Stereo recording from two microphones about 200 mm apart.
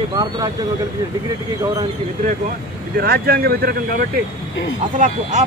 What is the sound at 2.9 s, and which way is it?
Speech, 50° right (ahead or behind).